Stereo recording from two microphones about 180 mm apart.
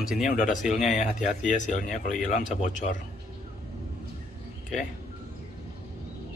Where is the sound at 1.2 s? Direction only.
40° left (ahead or behind).